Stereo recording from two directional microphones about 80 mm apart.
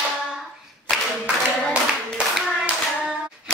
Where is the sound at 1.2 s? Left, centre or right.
Centre.